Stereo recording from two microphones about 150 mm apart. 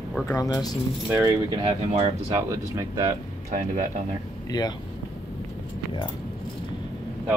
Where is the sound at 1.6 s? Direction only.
40° right (ahead or behind).